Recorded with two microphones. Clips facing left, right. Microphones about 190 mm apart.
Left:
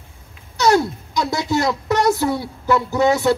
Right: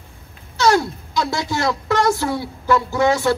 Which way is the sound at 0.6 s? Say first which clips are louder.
Left 1 dB; 20° left (ahead or behind).